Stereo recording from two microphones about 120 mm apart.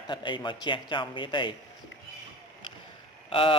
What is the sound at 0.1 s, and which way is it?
Speech, 40° left (ahead or behind).